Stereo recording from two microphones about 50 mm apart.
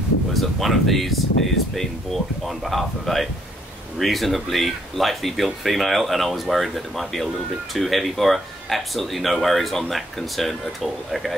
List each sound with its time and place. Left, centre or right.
0.3 s speech: centre